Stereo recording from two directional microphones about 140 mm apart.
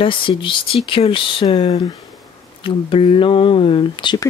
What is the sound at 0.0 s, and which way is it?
Speech, 40° left (ahead or behind).